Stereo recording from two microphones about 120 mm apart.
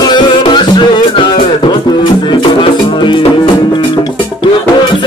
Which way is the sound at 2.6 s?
40° left (ahead or behind).